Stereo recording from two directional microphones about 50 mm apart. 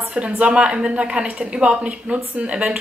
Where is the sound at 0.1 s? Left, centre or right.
Right.